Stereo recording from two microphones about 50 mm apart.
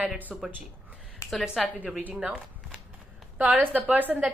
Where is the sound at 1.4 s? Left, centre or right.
Centre.